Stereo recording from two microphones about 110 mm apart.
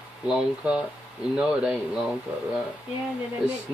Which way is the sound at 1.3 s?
5° right (ahead or behind).